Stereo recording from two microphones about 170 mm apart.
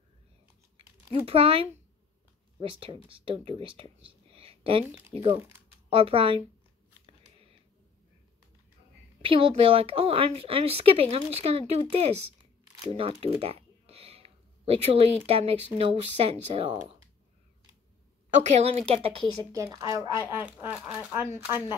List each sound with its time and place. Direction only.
1.2 s speech: 35° right (ahead or behind)
4.0 s a sound: 35° right (ahead or behind)
5.9 s speech: 30° right (ahead or behind)
9.2 s speech: 30° right (ahead or behind)
18.4 s speech: 40° right (ahead or behind)
19.3 s speech: 20° right (ahead or behind)